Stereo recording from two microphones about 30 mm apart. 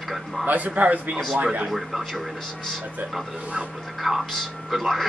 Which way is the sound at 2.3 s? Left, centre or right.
Centre.